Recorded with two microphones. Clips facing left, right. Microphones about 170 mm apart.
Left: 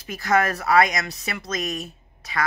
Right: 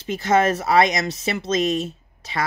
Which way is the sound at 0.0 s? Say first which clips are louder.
Right 3 dB; 25° right (ahead or behind).